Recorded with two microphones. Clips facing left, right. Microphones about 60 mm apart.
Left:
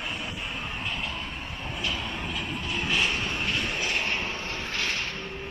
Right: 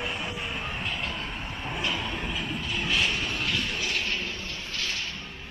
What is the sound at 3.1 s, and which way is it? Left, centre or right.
Vehicle, left.